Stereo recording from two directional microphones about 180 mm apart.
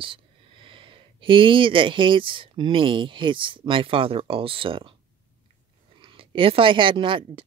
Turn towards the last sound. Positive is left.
turn(degrees=-30)  # may be behind; listen again after turning